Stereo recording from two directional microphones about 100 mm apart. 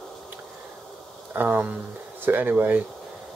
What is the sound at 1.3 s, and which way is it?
A man's voice, 20° right (ahead or behind).